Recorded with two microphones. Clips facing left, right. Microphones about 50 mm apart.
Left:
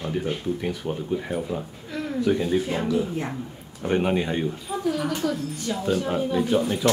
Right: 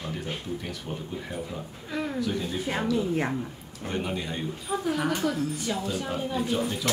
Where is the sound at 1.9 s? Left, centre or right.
Centre.